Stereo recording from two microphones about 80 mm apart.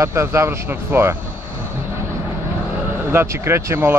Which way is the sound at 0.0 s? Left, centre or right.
Right.